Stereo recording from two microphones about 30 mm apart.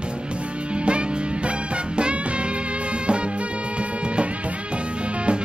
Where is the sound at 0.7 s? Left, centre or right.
Right.